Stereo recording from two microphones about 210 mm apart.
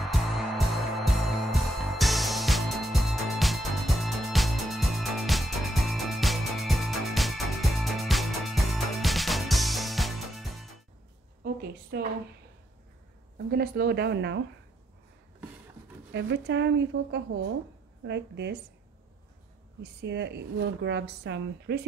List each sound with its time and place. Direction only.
0.0 s music: centre (ahead or behind)
11.4 s a sound: 45° right (ahead or behind)
13.5 s speech: 50° right (ahead or behind)
16.1 s speech: 55° right (ahead or behind)
19.8 s speech: 55° right (ahead or behind)